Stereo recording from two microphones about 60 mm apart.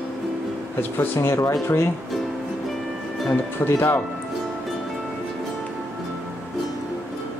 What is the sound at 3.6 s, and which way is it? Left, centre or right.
Speech, left.